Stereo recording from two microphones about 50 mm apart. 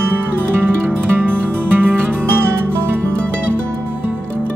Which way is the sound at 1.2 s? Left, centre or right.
Right.